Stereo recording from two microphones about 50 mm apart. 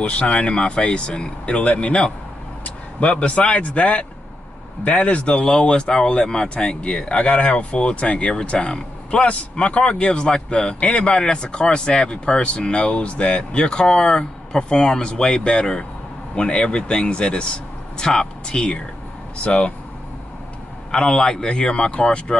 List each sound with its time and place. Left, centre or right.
0.0 s speech: left
20.9 s speech: centre